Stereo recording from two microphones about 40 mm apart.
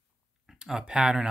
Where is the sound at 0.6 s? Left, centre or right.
Centre.